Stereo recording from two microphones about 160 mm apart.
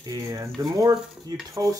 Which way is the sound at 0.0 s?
20° right (ahead or behind).